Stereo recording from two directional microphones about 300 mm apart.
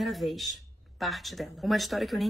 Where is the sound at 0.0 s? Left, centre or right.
Centre.